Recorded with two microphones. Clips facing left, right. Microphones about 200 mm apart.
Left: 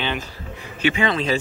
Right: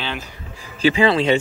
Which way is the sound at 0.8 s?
35° right (ahead or behind).